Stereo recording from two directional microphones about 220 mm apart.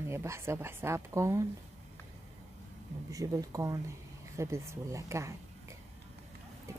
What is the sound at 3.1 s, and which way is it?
A woman's voice, 15° right (ahead or behind).